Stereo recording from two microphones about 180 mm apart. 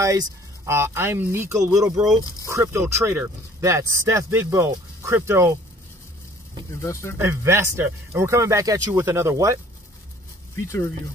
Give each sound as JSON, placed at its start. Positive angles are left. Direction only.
{"t": 0.0, "sound": "speech", "side_deg": -15}
{"t": 6.8, "sound": "speech", "side_deg": 15}
{"t": 7.2, "sound": "speech", "side_deg": -15}
{"t": 10.5, "sound": "speech", "side_deg": 10}